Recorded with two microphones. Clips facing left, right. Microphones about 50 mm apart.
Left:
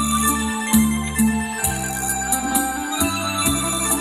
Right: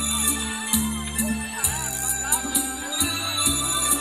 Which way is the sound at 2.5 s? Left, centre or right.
Left.